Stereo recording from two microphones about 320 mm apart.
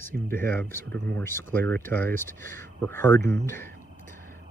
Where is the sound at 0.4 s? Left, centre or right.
Centre.